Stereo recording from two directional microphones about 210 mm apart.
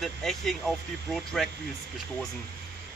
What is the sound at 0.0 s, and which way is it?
A man's voice, centre (ahead or behind).